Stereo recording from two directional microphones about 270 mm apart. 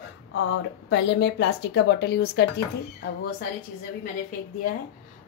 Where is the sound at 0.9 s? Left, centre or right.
Left.